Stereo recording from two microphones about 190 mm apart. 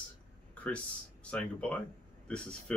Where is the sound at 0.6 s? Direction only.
5° left (ahead or behind).